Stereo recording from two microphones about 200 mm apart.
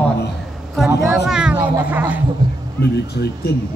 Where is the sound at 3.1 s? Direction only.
55° left (ahead or behind).